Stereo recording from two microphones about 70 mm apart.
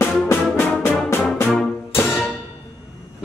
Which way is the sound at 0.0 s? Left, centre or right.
Left.